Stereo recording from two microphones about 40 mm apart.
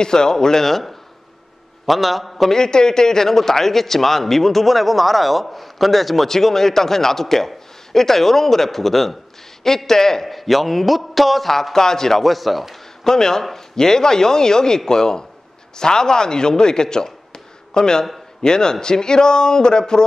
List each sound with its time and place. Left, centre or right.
0.0 s a man's voice: centre
2.5 s a man's voice: centre
13.0 s a man's voice: centre